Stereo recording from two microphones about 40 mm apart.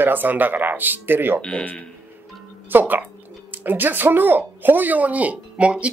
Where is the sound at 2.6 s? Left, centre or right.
Right.